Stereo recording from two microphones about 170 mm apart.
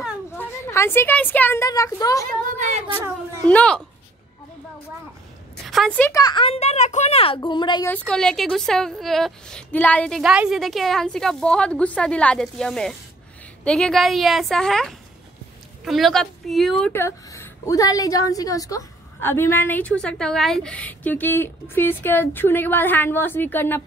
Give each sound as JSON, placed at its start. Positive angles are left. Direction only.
{"t": 0.4, "sound": "a woman's voice", "side_deg": 15}
{"t": 2.4, "sound": "a sound", "side_deg": -50}
{"t": 3.4, "sound": "a woman's voice", "side_deg": 5}
{"t": 5.7, "sound": "a woman's voice", "side_deg": 5}
{"t": 6.1, "sound": "speech", "side_deg": 25}
{"t": 7.9, "sound": "a woman's voice", "side_deg": 5}
{"t": 16.9, "sound": "a woman's voice", "side_deg": 15}